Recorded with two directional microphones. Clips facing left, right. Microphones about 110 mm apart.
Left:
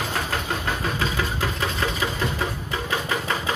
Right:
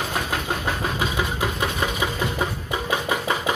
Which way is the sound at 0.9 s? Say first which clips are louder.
Right 1 dB; 15° right (ahead or behind).